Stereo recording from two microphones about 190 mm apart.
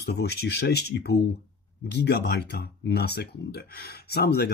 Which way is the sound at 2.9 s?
60° left (ahead or behind).